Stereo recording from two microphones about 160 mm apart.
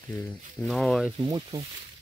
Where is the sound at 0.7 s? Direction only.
Centre (ahead or behind).